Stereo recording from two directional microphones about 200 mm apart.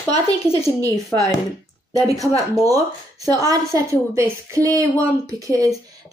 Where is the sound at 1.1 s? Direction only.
15° left (ahead or behind).